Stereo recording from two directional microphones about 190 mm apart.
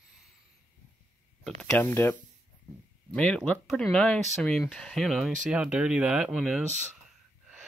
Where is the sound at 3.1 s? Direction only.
5° left (ahead or behind).